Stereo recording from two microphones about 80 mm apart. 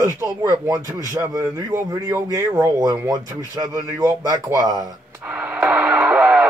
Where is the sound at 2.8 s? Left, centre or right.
Right.